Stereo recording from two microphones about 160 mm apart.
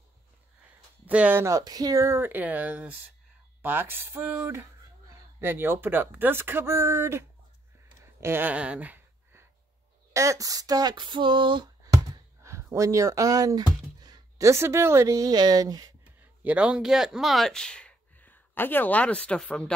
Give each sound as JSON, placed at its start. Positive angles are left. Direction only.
{"t": 1.0, "sound": "speech", "side_deg": -10}
{"t": 8.0, "sound": "a sound", "side_deg": -15}
{"t": 16.2, "sound": "a man's voice", "side_deg": -10}